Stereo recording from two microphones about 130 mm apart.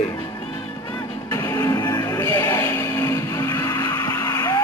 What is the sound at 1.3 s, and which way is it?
Music, 25° left (ahead or behind).